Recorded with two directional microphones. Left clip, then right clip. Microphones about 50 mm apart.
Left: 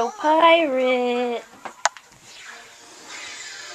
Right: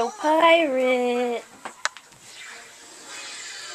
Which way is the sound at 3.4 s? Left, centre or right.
Left.